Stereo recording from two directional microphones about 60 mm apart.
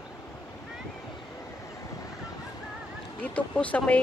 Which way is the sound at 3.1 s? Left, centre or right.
Left.